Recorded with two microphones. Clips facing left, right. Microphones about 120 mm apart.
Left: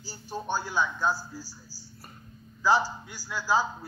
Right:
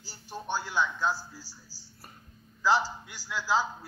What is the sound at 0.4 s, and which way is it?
Speech, 15° left (ahead or behind).